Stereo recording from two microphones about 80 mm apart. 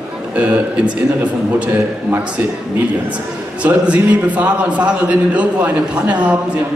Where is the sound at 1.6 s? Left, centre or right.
Right.